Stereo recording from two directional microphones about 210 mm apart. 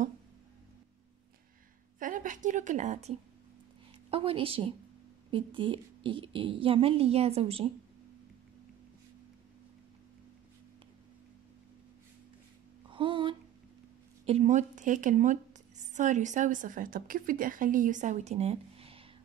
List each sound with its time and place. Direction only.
2.0 s a woman's voice: 40° right (ahead or behind)
12.9 s a sound: 25° right (ahead or behind)
14.2 s a woman's voice: 30° right (ahead or behind)